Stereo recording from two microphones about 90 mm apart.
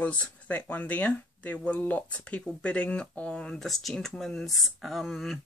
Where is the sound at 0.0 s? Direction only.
15° left (ahead or behind).